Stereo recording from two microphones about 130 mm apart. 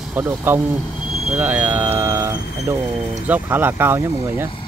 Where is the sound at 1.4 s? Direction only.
15° right (ahead or behind).